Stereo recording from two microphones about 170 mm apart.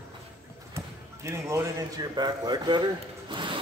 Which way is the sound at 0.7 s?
15° right (ahead or behind).